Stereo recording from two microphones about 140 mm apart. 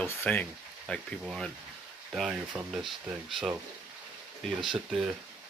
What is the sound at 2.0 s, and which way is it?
Speech, 5° right (ahead or behind).